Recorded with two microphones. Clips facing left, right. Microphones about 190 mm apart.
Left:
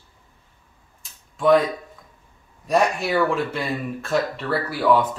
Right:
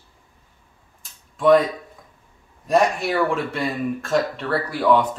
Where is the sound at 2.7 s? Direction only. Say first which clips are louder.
Right 1 dB; centre (ahead or behind).